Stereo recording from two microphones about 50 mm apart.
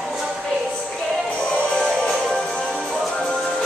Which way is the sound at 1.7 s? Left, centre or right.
Centre.